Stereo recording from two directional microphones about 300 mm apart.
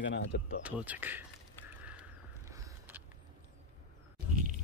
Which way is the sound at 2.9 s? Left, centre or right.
Centre.